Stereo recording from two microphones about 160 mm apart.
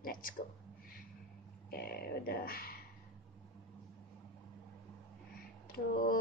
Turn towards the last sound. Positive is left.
turn(degrees=65)  # may be behind; listen again after turning